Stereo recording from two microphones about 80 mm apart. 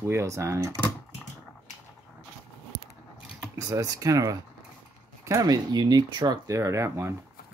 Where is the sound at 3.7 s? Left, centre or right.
Right.